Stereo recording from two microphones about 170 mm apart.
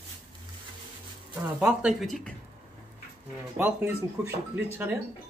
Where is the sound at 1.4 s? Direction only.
5° right (ahead or behind).